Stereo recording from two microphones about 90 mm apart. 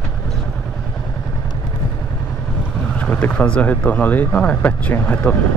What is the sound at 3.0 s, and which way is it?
Speech, 15° left (ahead or behind).